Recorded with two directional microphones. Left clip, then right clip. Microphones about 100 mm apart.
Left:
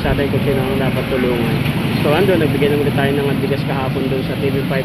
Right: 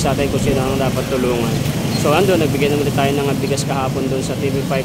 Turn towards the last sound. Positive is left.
turn(degrees=-30)  # may be behind; listen again after turning